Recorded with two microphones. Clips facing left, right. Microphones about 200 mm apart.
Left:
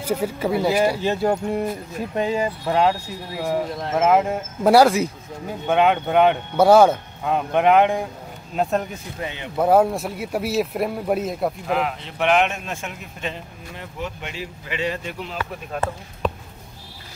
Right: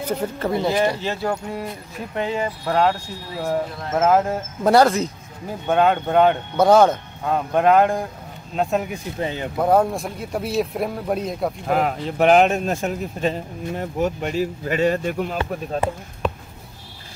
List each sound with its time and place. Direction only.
0.0 s speech: 10° left (ahead or behind)
2.7 s speech: 10° left (ahead or behind)
9.2 s speech: 40° right (ahead or behind)
9.6 s speech: 5° left (ahead or behind)
11.6 s speech: 45° right (ahead or behind)
15.7 s speech: 30° right (ahead or behind)
16.2 s basketball bounce: centre (ahead or behind)